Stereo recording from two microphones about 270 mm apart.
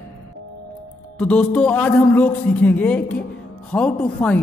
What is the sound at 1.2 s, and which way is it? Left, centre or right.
A man's voice, centre.